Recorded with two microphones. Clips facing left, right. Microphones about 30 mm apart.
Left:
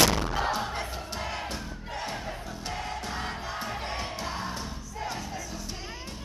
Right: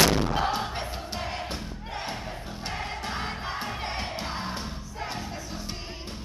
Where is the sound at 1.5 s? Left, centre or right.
Right.